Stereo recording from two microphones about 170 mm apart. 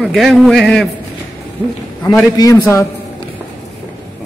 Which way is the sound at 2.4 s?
20° left (ahead or behind).